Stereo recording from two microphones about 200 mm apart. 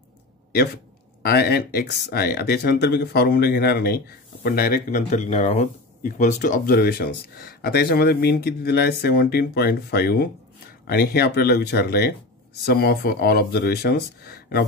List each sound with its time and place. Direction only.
1.2 s speech: 50° left (ahead or behind)